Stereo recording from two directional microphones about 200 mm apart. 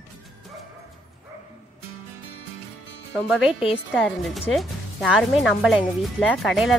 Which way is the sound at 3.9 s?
Centre (ahead or behind).